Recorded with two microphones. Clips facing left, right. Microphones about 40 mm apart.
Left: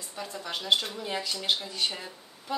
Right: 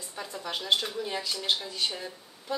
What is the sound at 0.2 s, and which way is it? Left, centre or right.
A woman's voice, centre.